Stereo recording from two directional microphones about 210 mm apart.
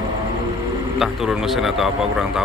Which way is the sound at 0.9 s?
Centre (ahead or behind).